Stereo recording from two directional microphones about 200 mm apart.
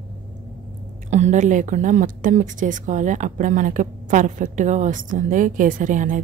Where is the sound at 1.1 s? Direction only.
35° right (ahead or behind).